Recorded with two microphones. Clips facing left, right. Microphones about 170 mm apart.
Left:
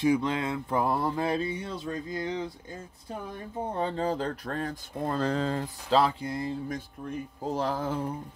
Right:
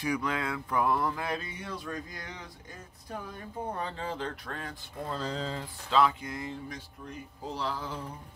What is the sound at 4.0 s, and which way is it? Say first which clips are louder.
Speech: left 7 dB; 40° left (ahead or behind).